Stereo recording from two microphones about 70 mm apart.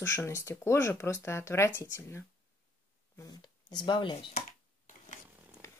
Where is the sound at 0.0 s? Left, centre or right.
Left.